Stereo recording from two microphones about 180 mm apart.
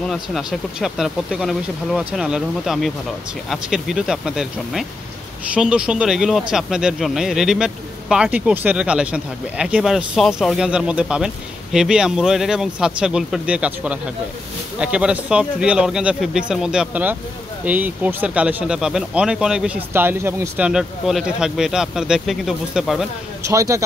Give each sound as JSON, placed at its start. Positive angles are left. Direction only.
{"t": 0.0, "sound": "speech", "side_deg": 0}
{"t": 23.5, "sound": "speech", "side_deg": -15}